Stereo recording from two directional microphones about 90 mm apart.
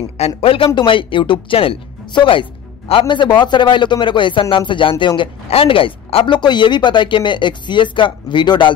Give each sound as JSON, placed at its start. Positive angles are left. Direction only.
{"t": 0.4, "sound": "speech", "side_deg": 90}
{"t": 0.7, "sound": "a man's voice", "side_deg": 70}